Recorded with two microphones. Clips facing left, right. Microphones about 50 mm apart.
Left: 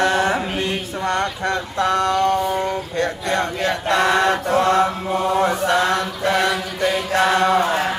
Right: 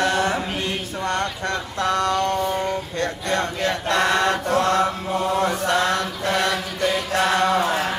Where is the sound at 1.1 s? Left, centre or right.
Left.